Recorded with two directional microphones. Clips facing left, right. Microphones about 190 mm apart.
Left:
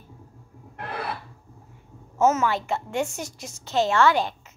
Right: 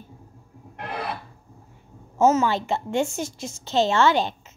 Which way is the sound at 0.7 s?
20° right (ahead or behind).